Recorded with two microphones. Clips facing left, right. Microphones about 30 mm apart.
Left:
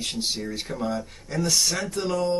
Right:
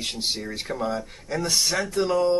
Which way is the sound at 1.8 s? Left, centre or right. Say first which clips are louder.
Right 4 dB; centre.